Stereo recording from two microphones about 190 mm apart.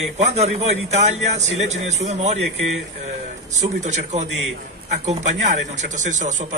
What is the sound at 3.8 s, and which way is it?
Speech, 35° right (ahead or behind).